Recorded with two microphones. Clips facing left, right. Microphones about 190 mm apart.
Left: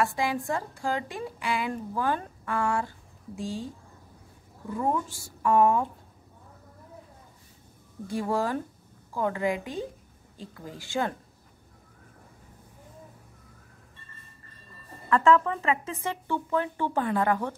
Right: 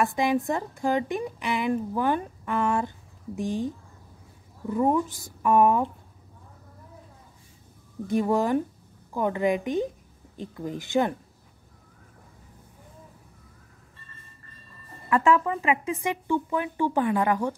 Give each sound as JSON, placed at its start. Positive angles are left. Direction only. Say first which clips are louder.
{"t": 0.0, "sound": "a woman's voice", "louder": "right 4 dB", "side_deg": -20}
{"t": 4.7, "sound": "a woman's voice", "louder": "right 5 dB", "side_deg": -20}
{"t": 8.1, "sound": "a woman's voice", "louder": "right 5 dB", "side_deg": -20}
{"t": 15.0, "sound": "speech", "louder": "even", "side_deg": -15}